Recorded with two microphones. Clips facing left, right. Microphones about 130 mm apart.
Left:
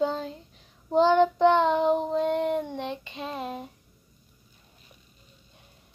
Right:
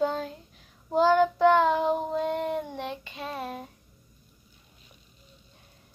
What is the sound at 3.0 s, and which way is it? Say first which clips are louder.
Child singing: left 1 dB; 25° left (ahead or behind).